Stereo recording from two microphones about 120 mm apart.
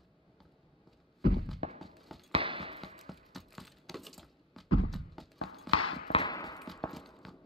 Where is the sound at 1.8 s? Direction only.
Centre (ahead or behind).